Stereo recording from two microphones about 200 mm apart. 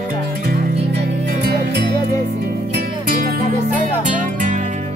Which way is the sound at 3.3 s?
45° right (ahead or behind).